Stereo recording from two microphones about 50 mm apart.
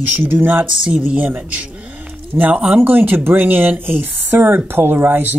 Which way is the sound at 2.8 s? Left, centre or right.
Right.